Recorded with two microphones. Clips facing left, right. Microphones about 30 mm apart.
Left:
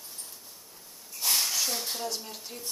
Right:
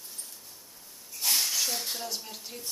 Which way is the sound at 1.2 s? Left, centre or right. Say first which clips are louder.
Even; centre.